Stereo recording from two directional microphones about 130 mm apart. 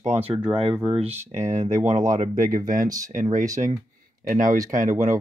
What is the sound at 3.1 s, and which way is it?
Speech, 75° right (ahead or behind).